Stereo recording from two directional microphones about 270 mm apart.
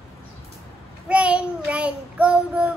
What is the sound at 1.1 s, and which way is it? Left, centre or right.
Child singing, centre.